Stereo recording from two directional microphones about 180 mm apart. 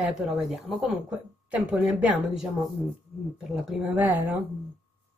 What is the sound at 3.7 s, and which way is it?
Speech, 10° right (ahead or behind).